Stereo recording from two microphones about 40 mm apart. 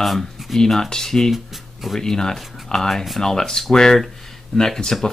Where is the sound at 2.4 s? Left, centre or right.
Centre.